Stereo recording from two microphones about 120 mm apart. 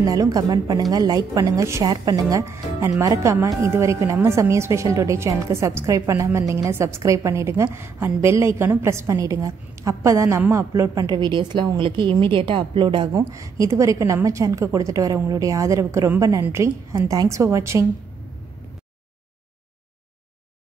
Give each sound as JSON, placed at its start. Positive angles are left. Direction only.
{"t": 0.0, "sound": "a woman's voice", "side_deg": -30}
{"t": 13.1, "sound": "a woman's voice", "side_deg": -25}